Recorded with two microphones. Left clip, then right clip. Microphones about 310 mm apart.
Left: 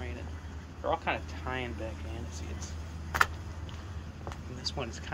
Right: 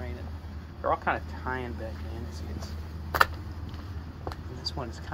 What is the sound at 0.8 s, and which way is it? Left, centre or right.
Speech, centre.